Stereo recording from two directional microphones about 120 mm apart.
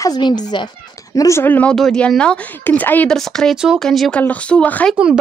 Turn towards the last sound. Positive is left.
turn(degrees=10)  # may be behind; listen again after turning